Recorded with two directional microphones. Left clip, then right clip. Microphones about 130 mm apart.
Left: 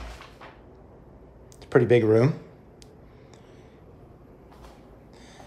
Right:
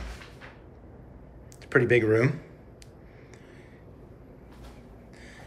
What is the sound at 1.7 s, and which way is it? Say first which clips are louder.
Speech: left 3 dB; 40° left (ahead or behind).